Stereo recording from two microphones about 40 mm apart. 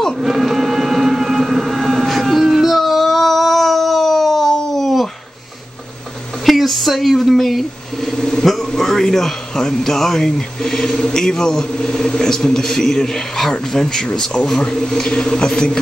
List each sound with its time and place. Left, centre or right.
0.2 s vehicle: centre
6.4 s speech: centre